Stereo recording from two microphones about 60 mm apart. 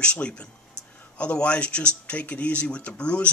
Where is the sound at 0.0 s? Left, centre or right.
Centre.